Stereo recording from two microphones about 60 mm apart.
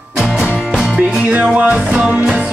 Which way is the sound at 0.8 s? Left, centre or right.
Right.